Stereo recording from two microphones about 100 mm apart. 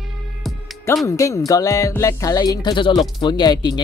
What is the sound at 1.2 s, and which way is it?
Speech, 35° left (ahead or behind).